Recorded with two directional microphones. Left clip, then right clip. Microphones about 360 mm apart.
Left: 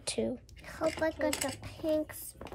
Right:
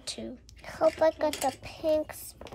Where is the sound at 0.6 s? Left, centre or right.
Right.